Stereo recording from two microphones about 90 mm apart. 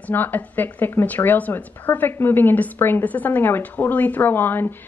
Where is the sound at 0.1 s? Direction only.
20° left (ahead or behind).